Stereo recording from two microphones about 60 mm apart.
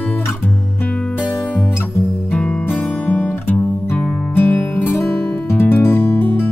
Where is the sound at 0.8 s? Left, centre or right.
Centre.